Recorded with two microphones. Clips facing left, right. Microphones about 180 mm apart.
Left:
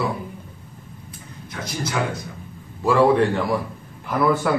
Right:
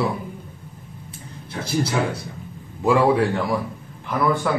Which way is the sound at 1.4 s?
30° right (ahead or behind).